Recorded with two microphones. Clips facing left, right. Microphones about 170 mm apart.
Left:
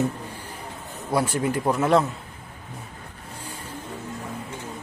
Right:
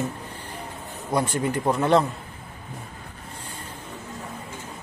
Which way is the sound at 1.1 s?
5° left (ahead or behind).